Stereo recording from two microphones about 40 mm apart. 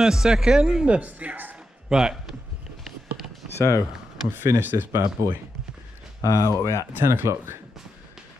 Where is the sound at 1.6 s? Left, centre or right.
Centre.